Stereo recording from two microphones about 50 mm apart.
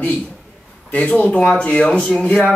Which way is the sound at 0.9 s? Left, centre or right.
Left.